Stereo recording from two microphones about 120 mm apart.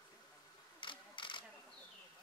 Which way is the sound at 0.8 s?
40° left (ahead or behind).